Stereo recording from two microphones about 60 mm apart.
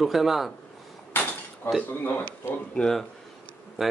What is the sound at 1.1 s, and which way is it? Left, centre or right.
Dishes, left.